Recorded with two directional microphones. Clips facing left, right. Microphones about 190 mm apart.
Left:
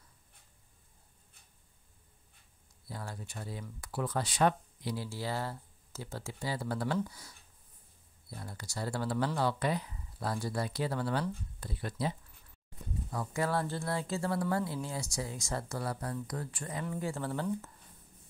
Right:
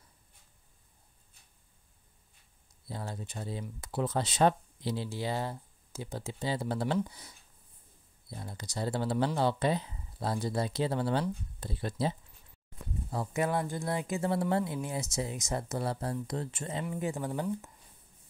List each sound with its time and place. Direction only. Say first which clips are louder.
2.9 s speech: right 3 dB; 25° right (ahead or behind)